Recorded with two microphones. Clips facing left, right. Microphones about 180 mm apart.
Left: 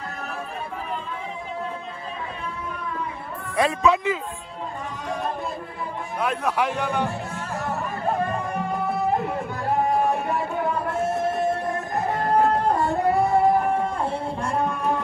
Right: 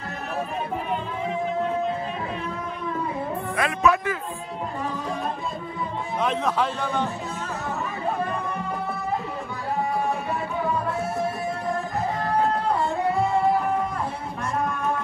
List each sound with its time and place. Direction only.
3.5 s a man's voice: 30° left (ahead or behind)
6.2 s a man's voice: 15° left (ahead or behind)
9.7 s music: 55° left (ahead or behind)
12.2 s music: 50° left (ahead or behind)